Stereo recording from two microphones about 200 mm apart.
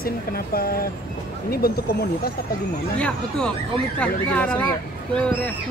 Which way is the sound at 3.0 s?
5° left (ahead or behind).